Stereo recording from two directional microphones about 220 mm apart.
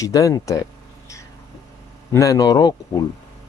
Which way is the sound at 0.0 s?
15° left (ahead or behind).